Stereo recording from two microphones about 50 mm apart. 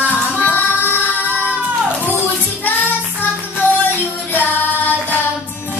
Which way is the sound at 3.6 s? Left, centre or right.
Left.